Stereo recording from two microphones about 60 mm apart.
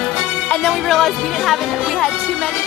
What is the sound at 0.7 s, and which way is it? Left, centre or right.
Speech, centre.